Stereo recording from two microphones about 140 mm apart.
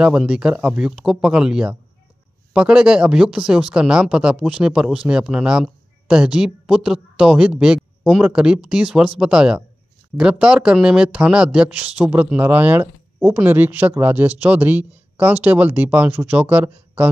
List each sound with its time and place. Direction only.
0.0 s speech: 5° right (ahead or behind)